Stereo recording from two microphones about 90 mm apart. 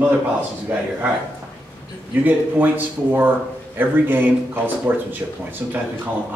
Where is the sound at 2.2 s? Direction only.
20° right (ahead or behind).